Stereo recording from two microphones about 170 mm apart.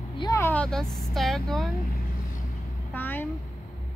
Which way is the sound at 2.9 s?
10° left (ahead or behind).